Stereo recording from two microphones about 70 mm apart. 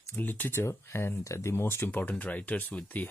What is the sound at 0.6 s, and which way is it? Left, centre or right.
Speech, left.